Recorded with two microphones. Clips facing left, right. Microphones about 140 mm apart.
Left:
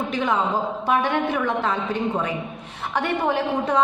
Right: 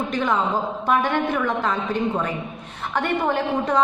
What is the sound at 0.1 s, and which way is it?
A woman's voice, 5° left (ahead or behind).